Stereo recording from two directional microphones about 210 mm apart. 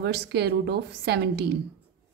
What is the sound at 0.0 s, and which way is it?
A woman's voice, 55° right (ahead or behind).